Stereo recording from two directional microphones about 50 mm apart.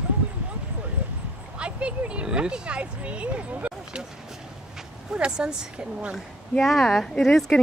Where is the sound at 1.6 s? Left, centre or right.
Right.